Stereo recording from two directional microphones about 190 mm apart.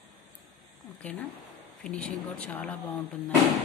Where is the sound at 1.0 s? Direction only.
5° left (ahead or behind).